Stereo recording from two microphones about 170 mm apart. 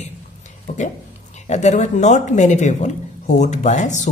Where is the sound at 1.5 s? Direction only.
45° left (ahead or behind).